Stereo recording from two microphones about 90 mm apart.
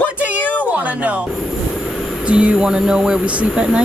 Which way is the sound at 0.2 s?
15° right (ahead or behind).